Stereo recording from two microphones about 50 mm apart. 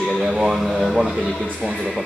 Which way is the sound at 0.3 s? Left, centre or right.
Centre.